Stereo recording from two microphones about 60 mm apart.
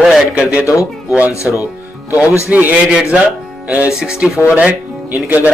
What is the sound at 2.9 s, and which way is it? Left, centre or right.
Speech, centre.